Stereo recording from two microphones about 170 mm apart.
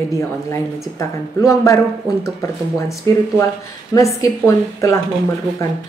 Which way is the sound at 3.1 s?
20° left (ahead or behind).